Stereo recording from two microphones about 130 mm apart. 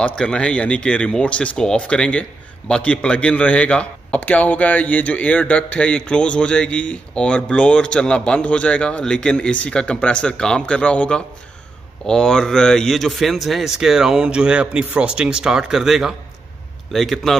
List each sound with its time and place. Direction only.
0.0 s a man's voice: 5° left (ahead or behind)